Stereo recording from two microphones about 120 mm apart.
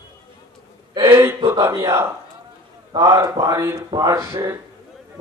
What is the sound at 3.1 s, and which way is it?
Speech, 25° right (ahead or behind).